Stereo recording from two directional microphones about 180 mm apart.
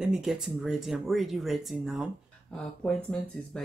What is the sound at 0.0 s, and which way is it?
Speech, centre (ahead or behind).